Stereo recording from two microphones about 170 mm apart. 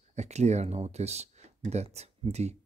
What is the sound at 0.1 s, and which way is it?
Speech, 40° right (ahead or behind).